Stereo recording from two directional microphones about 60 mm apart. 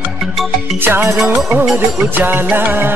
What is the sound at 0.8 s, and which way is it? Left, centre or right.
Music, right.